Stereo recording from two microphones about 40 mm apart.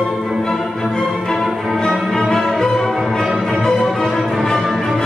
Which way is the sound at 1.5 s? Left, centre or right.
Centre.